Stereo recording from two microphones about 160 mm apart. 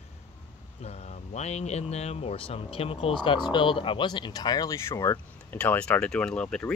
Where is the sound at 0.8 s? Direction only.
40° left (ahead or behind).